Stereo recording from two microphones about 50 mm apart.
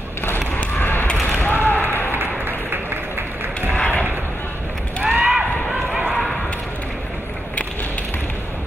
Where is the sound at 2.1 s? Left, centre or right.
Right.